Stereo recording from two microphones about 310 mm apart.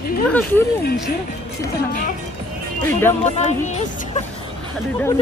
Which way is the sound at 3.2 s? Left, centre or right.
Left.